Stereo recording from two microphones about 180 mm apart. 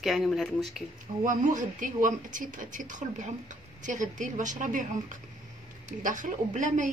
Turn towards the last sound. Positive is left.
turn(degrees=-45)  # may be behind; listen again after turning